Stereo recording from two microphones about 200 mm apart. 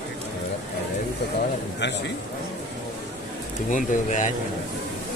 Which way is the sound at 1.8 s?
60° left (ahead or behind).